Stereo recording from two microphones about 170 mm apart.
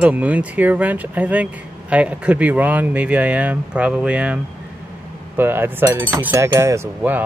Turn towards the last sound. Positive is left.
turn(degrees=-15)  # may be behind; listen again after turning